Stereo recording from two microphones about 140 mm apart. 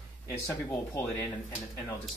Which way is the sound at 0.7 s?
20° left (ahead or behind).